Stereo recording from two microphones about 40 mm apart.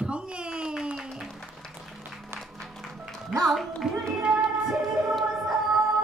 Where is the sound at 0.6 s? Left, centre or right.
Right.